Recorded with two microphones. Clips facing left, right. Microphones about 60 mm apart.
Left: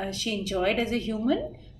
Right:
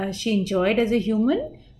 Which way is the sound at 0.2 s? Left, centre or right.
Right.